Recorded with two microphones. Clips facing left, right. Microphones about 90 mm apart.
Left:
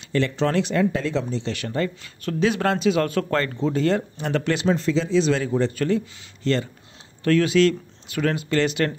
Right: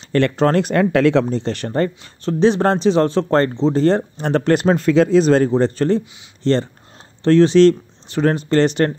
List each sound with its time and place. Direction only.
0.1 s speech: 50° right (ahead or behind); by 1.2 s 70° right (ahead or behind)
1.2 s speech: 40° right (ahead or behind)
3.5 s speech: 25° right (ahead or behind)
3.8 s speech: 40° right (ahead or behind)
5.5 s speech: 35° right (ahead or behind)